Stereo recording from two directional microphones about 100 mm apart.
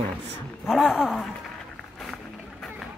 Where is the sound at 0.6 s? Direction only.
5° right (ahead or behind).